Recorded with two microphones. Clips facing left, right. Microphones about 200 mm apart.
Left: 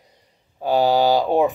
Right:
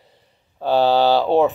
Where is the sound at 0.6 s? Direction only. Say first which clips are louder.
Right 1 dB; 10° left (ahead or behind).